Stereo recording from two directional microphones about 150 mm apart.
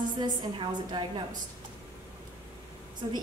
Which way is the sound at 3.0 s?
30° right (ahead or behind).